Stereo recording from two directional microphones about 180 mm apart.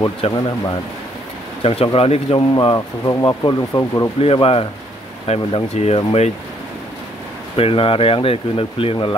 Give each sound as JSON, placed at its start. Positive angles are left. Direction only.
{"t": 0.2, "sound": "speech", "side_deg": 35}
{"t": 1.6, "sound": "speech", "side_deg": 30}
{"t": 2.5, "sound": "speech", "side_deg": 20}
{"t": 4.2, "sound": "speech", "side_deg": 30}
{"t": 7.5, "sound": "speech", "side_deg": 30}